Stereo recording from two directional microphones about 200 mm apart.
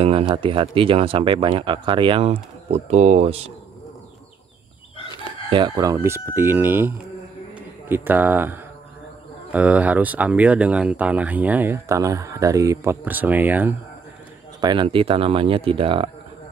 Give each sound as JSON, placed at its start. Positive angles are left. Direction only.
{"t": 0.0, "sound": "speech", "side_deg": -25}
{"t": 5.5, "sound": "speech", "side_deg": -20}
{"t": 14.6, "sound": "speech", "side_deg": -20}